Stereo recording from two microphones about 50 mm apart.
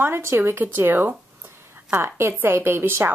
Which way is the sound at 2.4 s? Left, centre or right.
Right.